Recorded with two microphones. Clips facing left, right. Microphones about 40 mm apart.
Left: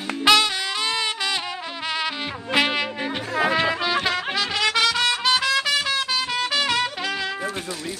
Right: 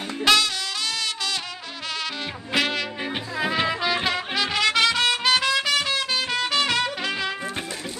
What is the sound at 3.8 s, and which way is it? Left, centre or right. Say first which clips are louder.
Music: left 1 dB; centre.